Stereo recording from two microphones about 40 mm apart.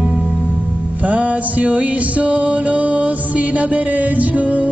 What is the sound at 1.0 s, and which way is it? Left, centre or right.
Music, right.